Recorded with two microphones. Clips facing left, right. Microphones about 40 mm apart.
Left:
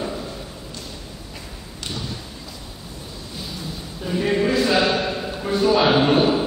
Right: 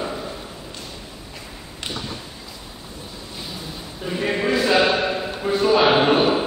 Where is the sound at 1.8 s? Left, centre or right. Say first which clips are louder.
Right 1 dB; centre.